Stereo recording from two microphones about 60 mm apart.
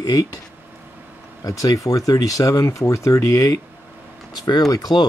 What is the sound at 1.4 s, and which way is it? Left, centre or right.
Speech, left.